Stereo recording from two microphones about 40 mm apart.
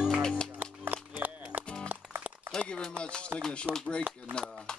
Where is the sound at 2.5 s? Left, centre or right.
Centre.